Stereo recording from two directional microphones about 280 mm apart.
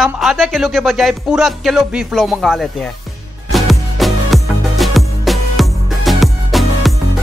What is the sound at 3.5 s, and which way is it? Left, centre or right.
Music, centre.